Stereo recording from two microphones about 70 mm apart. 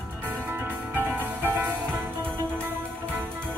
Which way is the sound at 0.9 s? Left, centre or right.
Right.